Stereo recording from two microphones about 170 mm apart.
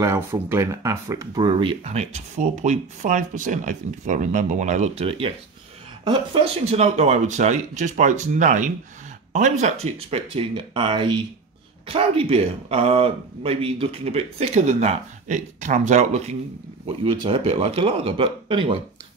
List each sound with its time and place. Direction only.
0.0 s speech: 15° right (ahead or behind); by 18.8 s 30° right (ahead or behind)